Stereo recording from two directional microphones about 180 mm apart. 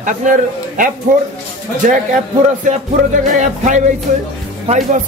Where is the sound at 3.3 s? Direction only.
45° right (ahead or behind).